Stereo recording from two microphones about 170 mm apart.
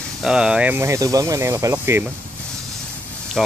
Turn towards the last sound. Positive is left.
turn(degrees=0)  # may be behind; listen again after turning